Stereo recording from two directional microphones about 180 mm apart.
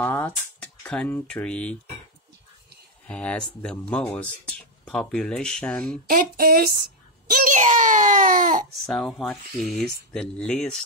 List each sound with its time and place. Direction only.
0.0 s speech: 10° left (ahead or behind)
3.1 s speech: 5° left (ahead or behind)
6.0 s a child's voice: 55° right (ahead or behind)
8.8 s speech: 5° left (ahead or behind)